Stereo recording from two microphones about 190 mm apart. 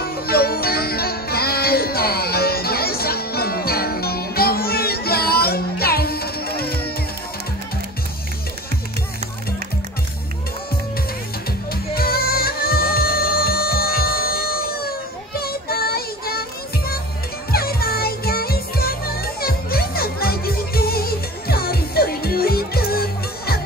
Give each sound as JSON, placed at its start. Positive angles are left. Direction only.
{"t": 0.0, "sound": "music", "side_deg": 55}
{"t": 11.7, "sound": "music", "side_deg": 55}